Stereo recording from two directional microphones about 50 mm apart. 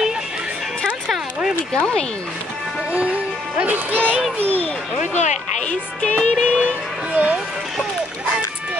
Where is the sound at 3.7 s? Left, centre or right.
Right.